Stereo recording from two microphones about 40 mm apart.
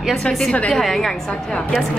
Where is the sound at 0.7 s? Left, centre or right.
Centre.